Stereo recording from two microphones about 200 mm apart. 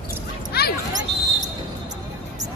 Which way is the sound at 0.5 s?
50° left (ahead or behind).